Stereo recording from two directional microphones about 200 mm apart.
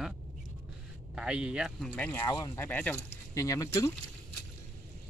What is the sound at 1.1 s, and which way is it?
Speech, 5° right (ahead or behind).